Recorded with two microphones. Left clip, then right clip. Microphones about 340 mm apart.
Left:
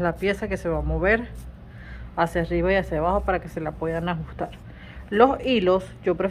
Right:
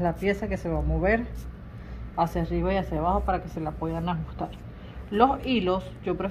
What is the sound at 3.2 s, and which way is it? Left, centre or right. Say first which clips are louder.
Speech: left 3 dB; centre.